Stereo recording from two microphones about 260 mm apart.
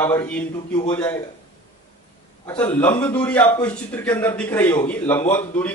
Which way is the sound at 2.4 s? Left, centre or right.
Centre.